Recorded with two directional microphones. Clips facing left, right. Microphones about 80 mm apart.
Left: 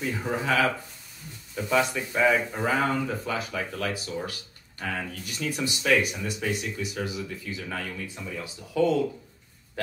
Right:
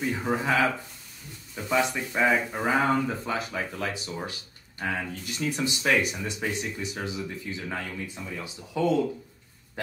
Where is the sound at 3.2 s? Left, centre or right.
Right.